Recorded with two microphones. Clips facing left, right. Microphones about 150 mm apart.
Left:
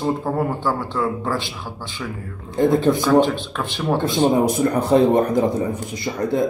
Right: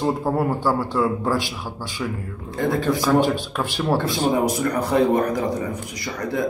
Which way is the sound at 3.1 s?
10° right (ahead or behind).